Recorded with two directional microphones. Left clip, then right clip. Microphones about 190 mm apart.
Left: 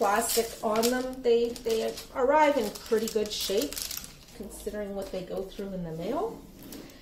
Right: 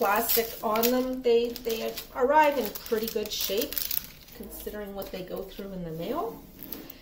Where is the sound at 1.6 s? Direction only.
40° left (ahead or behind).